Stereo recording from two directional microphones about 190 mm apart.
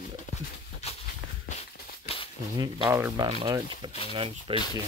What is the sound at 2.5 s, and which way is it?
Speech, 20° right (ahead or behind).